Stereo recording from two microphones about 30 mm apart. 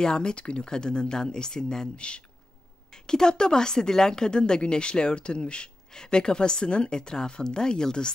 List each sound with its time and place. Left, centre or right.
0.0 s a woman's voice: left
2.0 s speech: left
2.9 s a woman's voice: left